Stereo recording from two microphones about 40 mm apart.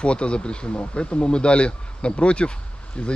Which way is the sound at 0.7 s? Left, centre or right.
Left.